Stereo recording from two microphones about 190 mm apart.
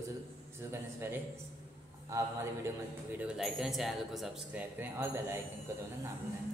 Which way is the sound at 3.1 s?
5° right (ahead or behind).